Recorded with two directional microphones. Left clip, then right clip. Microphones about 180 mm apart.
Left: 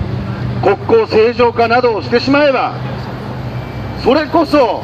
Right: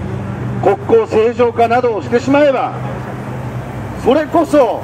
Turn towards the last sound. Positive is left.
turn(degrees=15)  # may be behind; listen again after turning